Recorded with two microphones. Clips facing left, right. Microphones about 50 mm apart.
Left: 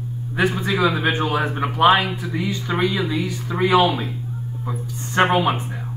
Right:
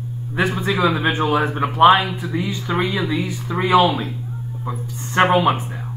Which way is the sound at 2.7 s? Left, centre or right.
Right.